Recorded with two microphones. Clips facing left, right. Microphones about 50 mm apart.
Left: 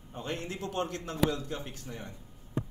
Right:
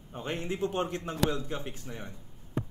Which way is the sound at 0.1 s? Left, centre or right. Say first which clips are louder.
Right 3 dB; right.